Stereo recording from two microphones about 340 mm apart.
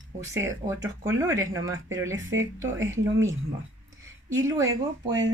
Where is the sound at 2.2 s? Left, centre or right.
Right.